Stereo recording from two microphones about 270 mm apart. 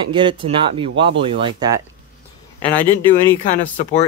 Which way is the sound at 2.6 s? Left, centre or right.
Centre.